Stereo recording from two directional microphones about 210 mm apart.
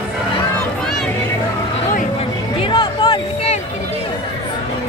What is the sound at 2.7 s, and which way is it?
Music, 25° left (ahead or behind).